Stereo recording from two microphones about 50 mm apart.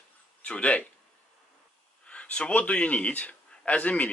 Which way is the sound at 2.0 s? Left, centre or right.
Left.